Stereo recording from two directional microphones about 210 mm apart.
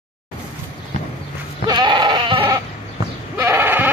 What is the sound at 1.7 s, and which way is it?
Sheep, 20° right (ahead or behind).